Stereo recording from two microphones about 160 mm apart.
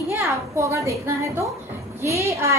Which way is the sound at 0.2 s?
15° right (ahead or behind).